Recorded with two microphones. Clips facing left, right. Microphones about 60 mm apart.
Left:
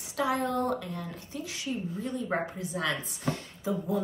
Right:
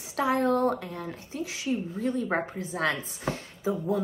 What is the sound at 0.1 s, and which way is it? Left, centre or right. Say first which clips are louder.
Speech: right 4 dB; right.